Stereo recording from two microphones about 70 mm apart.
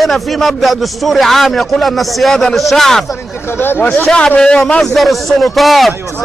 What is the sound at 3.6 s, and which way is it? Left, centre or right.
Speech, left.